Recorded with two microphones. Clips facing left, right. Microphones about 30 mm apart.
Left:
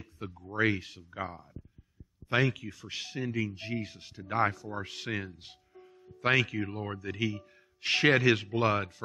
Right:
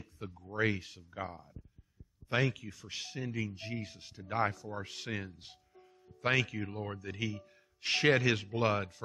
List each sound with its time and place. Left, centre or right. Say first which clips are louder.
0.0 s speech: left 4 dB; centre
3.3 s speech: left 6 dB; centre
5.1 s speech: left 4 dB; centre